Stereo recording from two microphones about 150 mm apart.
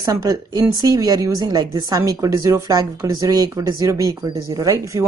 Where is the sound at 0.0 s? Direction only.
25° right (ahead or behind).